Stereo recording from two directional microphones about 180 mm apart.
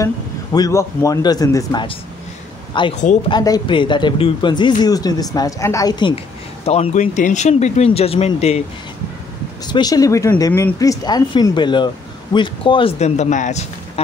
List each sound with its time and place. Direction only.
0.0 s speech: 20° left (ahead or behind)
6.6 s speech: 35° left (ahead or behind)
9.7 s speech: 20° left (ahead or behind); by 14.0 s 40° left (ahead or behind)